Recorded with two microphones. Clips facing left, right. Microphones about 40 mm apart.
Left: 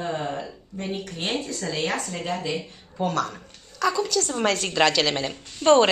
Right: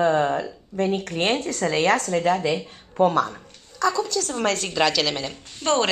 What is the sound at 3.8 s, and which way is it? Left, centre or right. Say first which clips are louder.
A woman's voice: right 1 dB; centre.